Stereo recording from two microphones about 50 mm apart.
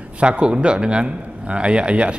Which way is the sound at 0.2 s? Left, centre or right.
Right.